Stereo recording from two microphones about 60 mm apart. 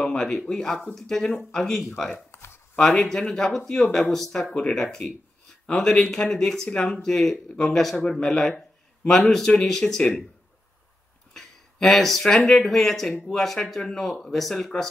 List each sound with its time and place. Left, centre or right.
0.0 s speech: centre
2.3 s a sound: left
3.1 s speech: centre
6.7 s speech: left
7.0 s a man's voice: centre
11.3 s speech: centre